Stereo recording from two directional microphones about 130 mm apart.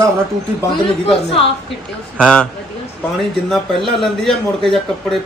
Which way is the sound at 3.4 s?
Centre (ahead or behind).